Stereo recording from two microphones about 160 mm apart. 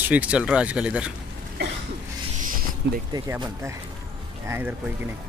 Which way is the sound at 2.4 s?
60° right (ahead or behind).